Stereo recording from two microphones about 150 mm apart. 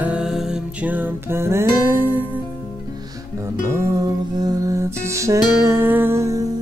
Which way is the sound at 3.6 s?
15° right (ahead or behind).